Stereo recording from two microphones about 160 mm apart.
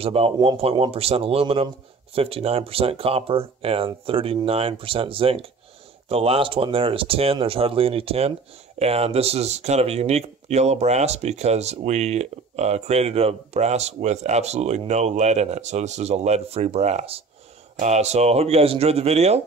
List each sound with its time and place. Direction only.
0.0 s speech: 35° right (ahead or behind)